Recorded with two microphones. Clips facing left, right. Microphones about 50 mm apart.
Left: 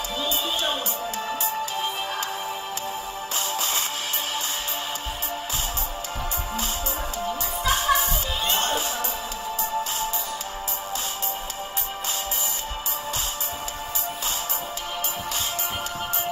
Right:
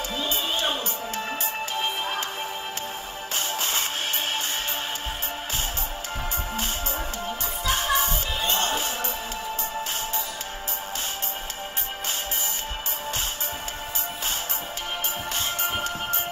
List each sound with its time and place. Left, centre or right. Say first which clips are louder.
1.1 s music: left 2 dB; right
7.7 s music: left 2 dB; right